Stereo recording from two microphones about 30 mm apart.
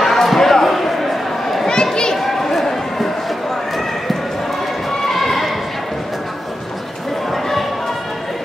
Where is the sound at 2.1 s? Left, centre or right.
Centre.